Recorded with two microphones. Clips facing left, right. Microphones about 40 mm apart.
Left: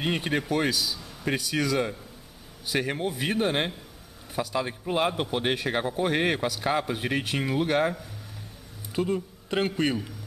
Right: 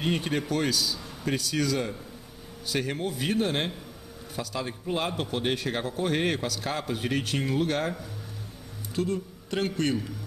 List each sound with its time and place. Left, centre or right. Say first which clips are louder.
0.0 s a man's voice: left 1 dB; centre
8.9 s speech: left 2 dB; centre